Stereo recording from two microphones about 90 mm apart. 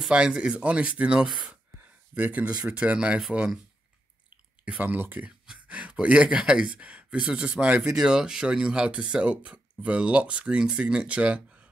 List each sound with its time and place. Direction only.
0.0 s speech: 10° right (ahead or behind)
2.1 s speech: 15° right (ahead or behind)
4.6 s speech: 20° right (ahead or behind)